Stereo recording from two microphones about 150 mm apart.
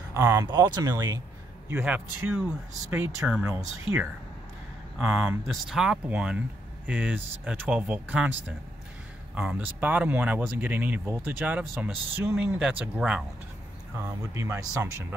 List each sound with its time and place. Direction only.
0.1 s speech: 20° right (ahead or behind)
1.7 s speech: 10° right (ahead or behind)
4.9 s speech: 5° right (ahead or behind)
9.3 s speech: 10° right (ahead or behind)